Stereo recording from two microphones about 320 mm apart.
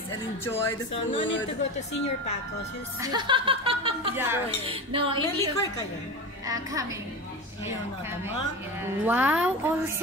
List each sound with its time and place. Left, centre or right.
0.5 s speech: centre
1.6 s speech: left
3.0 s speech: centre
5.2 s speech: centre
6.4 s speech: centre
9.0 s speech: centre